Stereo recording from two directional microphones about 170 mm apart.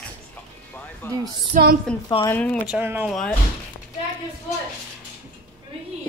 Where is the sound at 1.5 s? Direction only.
55° right (ahead or behind).